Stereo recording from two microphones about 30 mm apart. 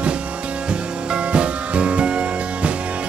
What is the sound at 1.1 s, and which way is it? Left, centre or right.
Music, right.